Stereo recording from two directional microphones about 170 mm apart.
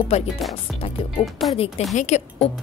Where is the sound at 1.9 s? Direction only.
40° left (ahead or behind).